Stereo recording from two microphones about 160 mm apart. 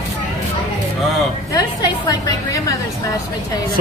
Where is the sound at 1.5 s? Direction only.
25° left (ahead or behind).